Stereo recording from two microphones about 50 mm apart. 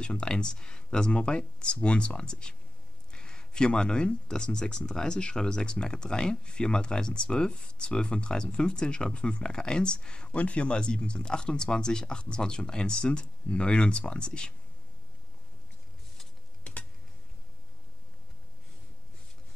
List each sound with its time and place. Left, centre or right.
0.0 s speech: left